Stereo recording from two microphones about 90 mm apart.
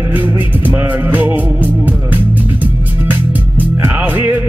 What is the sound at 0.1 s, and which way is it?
Music, 20° right (ahead or behind).